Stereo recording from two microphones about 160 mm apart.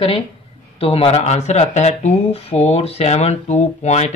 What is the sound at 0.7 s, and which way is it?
Speech, 35° left (ahead or behind).